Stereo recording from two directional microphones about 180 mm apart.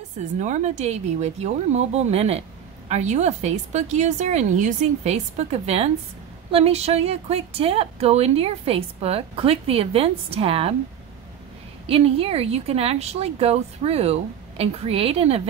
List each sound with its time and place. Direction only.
0.4 s speech: 40° right (ahead or behind)
11.8 s speech: 35° right (ahead or behind)